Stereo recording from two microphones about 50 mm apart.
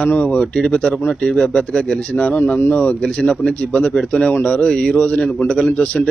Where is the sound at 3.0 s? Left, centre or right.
Centre.